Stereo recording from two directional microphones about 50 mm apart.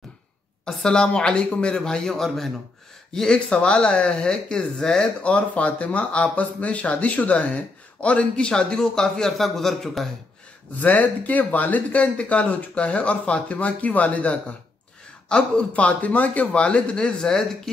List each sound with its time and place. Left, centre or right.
0.7 s speech: centre
5.2 s speech: left; by 10.0 s centre
10.8 s speech: left
15.2 s speech: centre
15.7 s speech: left
16.5 s speech: left